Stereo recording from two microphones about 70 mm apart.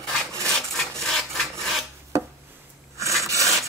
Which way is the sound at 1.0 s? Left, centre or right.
Centre.